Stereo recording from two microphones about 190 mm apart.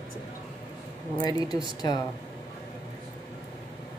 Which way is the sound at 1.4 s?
20° left (ahead or behind).